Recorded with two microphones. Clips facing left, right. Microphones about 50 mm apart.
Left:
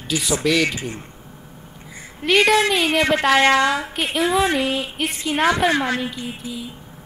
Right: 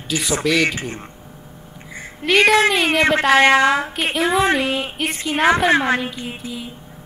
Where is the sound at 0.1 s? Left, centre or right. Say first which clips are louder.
Right 1 dB; centre.